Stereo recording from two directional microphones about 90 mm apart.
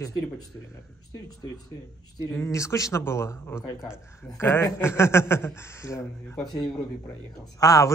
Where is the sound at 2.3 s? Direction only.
30° left (ahead or behind).